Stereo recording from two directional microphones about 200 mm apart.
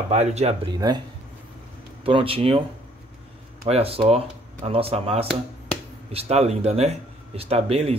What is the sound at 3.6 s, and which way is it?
Speech, 30° right (ahead or behind).